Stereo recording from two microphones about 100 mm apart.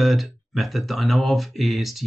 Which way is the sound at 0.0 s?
Centre (ahead or behind).